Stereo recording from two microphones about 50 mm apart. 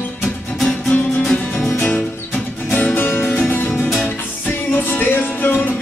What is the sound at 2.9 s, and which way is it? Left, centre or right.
Music, left.